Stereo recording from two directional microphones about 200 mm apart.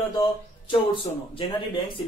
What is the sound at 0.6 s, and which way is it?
Speech, 25° left (ahead or behind).